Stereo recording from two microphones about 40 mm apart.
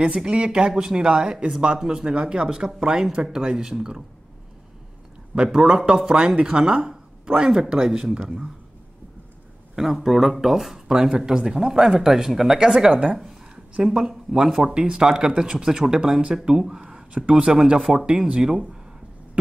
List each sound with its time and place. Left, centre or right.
0.0 s speech: right
5.3 s speech: centre
6.9 s a sound: centre
7.7 s speech: centre
9.8 s speech: centre
13.9 s speech: centre